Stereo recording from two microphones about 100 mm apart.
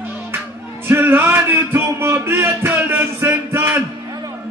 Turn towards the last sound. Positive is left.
turn(degrees=-20)  # may be behind; listen again after turning